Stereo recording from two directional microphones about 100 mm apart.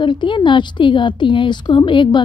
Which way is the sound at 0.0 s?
55° left (ahead or behind).